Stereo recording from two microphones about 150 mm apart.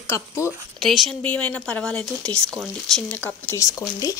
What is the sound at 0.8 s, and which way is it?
Speech, centre (ahead or behind).